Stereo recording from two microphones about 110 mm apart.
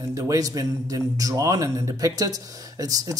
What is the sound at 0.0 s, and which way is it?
Speech, 30° right (ahead or behind).